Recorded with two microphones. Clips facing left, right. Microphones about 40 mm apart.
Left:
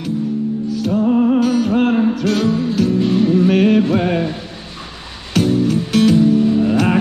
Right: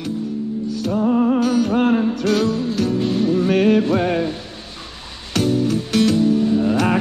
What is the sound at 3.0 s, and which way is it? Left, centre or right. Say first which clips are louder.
Music: left 3 dB; centre.